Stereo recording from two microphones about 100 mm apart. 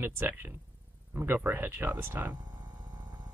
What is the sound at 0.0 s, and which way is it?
Speech, 20° right (ahead or behind).